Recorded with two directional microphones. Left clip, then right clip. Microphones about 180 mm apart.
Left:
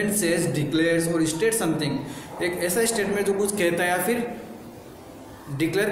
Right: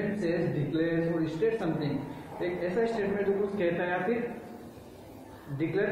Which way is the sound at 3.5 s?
20° left (ahead or behind).